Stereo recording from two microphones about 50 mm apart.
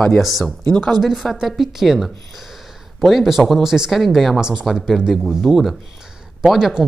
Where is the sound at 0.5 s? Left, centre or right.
Centre.